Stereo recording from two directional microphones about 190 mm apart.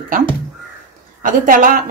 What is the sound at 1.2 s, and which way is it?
Speech, 45° right (ahead or behind).